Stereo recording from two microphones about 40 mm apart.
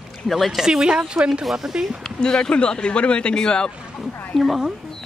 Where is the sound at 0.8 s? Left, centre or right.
Right.